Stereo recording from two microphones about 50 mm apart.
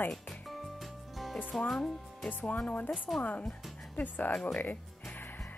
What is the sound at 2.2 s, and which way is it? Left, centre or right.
Speech, left.